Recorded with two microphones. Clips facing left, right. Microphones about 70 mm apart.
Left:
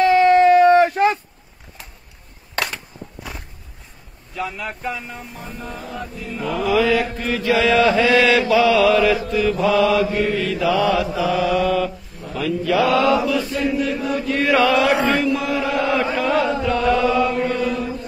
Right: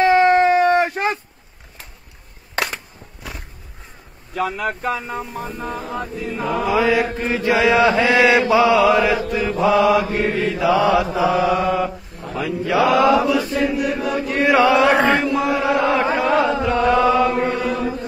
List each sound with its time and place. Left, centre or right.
0.0 s a sound: right
2.5 s a sound: centre
4.5 s music: right
6.4 s chant: right
10.7 s mantra: right
13.7 s chant: centre
14.8 s music: right
15.2 s chant: right